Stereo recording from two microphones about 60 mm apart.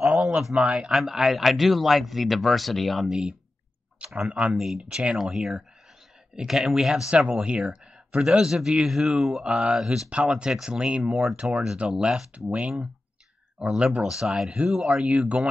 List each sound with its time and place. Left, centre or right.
0.0 s a sound: centre
0.4 s a man's voice: centre
3.1 s a man's voice: centre
4.6 s a man's voice: centre
7.1 s a man's voice: centre
11.1 s a man's voice: centre
13.7 s a man's voice: centre
15.0 s speech: right